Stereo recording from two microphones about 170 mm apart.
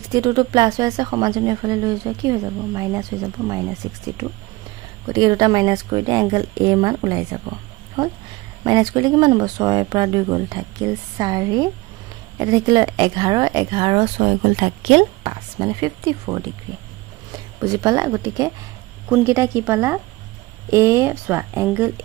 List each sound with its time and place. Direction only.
0.1 s speech: 25° right (ahead or behind)
5.0 s speech: 25° right (ahead or behind); by 15.0 s 45° right (ahead or behind)
15.2 s speech: 25° right (ahead or behind)
17.6 s speech: 20° right (ahead or behind)